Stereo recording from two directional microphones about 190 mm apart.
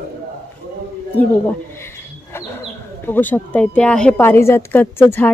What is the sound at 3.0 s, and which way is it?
A woman's voice, 10° left (ahead or behind).